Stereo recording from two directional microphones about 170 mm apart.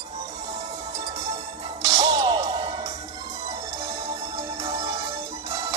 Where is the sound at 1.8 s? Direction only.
25° right (ahead or behind).